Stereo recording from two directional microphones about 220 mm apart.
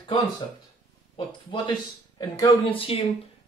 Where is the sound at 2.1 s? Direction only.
20° left (ahead or behind).